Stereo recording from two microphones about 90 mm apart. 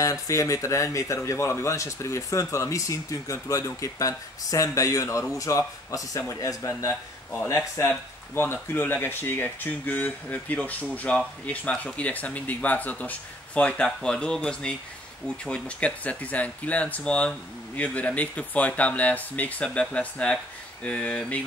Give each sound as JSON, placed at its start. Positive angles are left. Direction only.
{"t": 0.0, "sound": "speech", "side_deg": 40}